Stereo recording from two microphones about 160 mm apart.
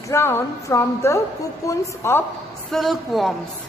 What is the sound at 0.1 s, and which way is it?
A woman's voice, 15° left (ahead or behind).